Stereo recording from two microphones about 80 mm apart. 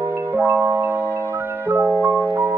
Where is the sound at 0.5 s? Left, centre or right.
Right.